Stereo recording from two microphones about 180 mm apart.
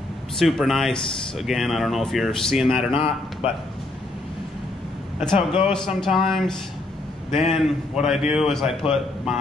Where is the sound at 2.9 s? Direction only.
30° left (ahead or behind).